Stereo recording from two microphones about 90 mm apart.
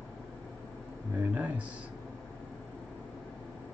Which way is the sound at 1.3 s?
15° right (ahead or behind).